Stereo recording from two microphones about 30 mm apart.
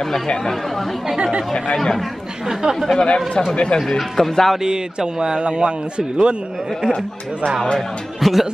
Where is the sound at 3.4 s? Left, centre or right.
Left.